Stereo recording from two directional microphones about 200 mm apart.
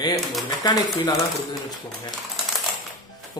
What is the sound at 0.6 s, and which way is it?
Speech, 20° left (ahead or behind).